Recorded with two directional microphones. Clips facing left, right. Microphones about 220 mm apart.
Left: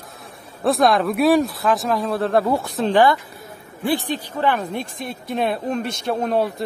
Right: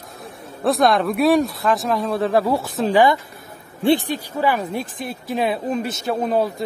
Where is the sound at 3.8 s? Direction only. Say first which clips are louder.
Right 5 dB; 20° right (ahead or behind).